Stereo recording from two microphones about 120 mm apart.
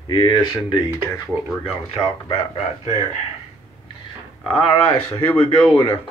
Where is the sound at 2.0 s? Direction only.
45° left (ahead or behind).